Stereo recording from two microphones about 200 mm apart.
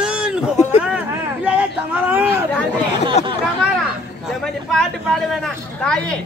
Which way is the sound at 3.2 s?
35° left (ahead or behind).